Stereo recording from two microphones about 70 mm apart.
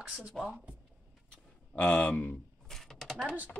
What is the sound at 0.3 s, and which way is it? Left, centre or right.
Speech, centre.